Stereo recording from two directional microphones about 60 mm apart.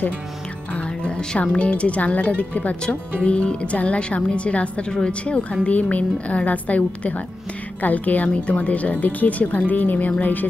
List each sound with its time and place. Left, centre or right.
0.7 s speech: centre